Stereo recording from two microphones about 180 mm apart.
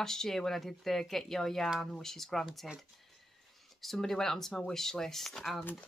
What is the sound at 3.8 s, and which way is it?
A woman's voice, centre (ahead or behind).